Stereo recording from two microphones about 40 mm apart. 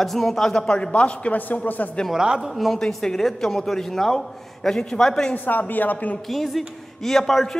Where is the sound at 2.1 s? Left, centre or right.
Centre.